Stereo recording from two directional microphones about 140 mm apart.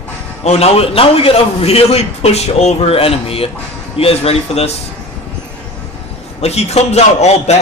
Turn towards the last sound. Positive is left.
turn(degrees=50)  # may be behind; listen again after turning